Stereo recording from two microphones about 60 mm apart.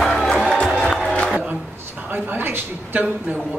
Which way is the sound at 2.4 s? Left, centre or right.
Right.